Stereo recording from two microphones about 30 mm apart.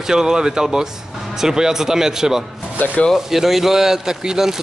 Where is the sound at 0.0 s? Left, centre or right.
Right.